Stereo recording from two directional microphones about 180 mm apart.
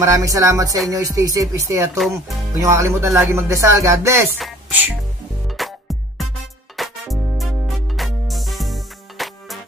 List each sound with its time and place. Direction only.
0.0 s speech: 20° right (ahead or behind)
0.8 s music: 20° right (ahead or behind)
2.6 s speech: 15° right (ahead or behind)
4.4 s a woman's voice: 5° right (ahead or behind)
5.6 s music: centre (ahead or behind)
6.8 s music: centre (ahead or behind)